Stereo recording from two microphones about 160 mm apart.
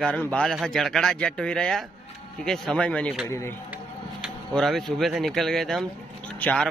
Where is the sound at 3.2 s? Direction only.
15° left (ahead or behind).